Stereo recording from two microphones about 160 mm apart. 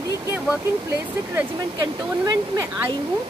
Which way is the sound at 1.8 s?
20° right (ahead or behind).